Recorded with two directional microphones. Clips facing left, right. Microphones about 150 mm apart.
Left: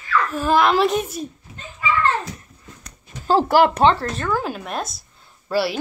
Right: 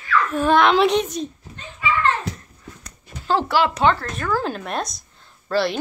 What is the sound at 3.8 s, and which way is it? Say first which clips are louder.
Speech: left 2 dB; 30° left (ahead or behind).